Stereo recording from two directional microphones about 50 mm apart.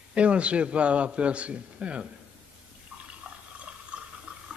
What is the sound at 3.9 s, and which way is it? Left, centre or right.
Water, right.